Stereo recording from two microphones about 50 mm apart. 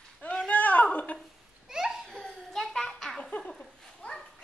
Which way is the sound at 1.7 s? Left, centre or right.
Centre.